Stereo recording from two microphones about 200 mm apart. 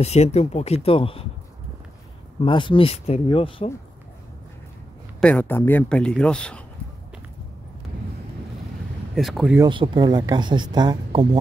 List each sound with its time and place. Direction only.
0.0 s speech: 30° left (ahead or behind)
2.4 s speech: 25° left (ahead or behind)
5.2 s speech: 5° left (ahead or behind)
9.1 s speech: centre (ahead or behind)
9.6 s speech: 25° right (ahead or behind)